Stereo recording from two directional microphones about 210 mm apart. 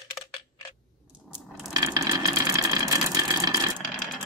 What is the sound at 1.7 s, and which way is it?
Sewing machine, 15° right (ahead or behind).